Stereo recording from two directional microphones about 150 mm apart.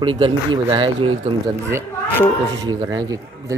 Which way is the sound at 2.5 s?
25° right (ahead or behind).